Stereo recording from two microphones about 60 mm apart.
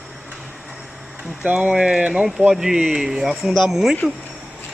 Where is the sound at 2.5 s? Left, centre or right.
Centre.